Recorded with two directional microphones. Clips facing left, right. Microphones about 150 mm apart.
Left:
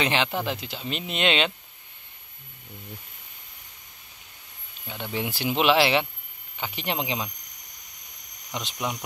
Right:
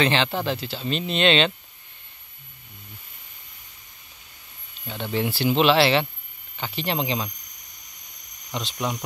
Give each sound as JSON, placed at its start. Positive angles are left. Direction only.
{"t": 0.0, "sound": "speech", "side_deg": 15}
{"t": 4.8, "sound": "speech", "side_deg": 10}
{"t": 8.5, "sound": "speech", "side_deg": 15}